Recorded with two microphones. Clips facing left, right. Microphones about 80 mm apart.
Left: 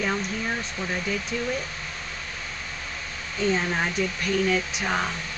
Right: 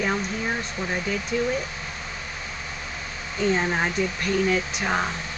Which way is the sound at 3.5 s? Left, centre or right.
Centre.